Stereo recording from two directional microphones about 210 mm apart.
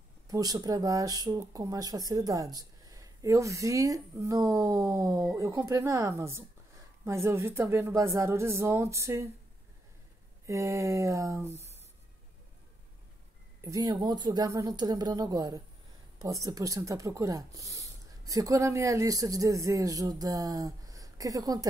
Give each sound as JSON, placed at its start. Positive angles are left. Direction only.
{"t": 0.3, "sound": "speech", "side_deg": -15}
{"t": 10.4, "sound": "speech", "side_deg": -15}
{"t": 13.6, "sound": "speech", "side_deg": -15}